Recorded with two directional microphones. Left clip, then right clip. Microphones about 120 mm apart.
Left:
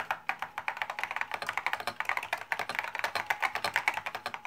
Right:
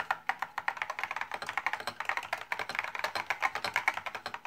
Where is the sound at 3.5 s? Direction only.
15° left (ahead or behind).